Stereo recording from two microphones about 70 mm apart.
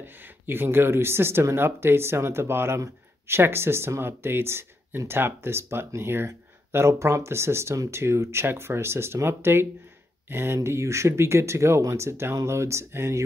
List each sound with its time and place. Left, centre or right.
0.0 s speech: right